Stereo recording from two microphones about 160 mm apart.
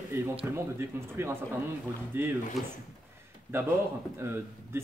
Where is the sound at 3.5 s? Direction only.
15° right (ahead or behind).